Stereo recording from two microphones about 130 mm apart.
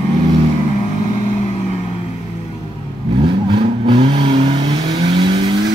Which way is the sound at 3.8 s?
40° right (ahead or behind).